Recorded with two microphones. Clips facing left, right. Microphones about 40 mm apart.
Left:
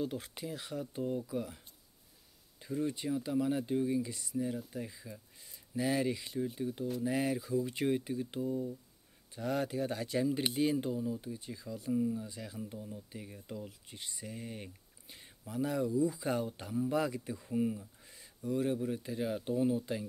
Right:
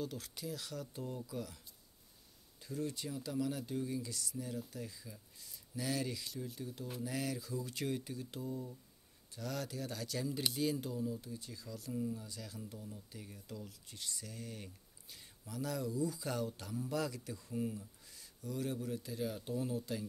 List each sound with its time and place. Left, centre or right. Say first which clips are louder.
0.0 s speech: left 5 dB; left
2.6 s speech: left 6 dB; left